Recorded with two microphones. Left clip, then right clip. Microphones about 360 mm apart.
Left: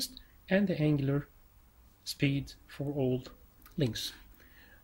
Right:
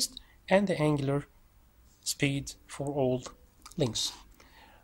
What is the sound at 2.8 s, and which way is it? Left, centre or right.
Speech, right.